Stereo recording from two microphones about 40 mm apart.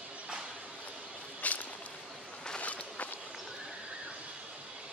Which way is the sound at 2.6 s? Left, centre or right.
Left.